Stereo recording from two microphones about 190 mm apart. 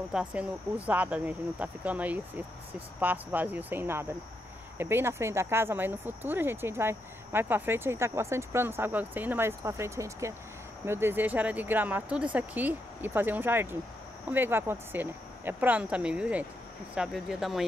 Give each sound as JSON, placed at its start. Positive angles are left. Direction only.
{"t": 0.1, "sound": "speech", "side_deg": -5}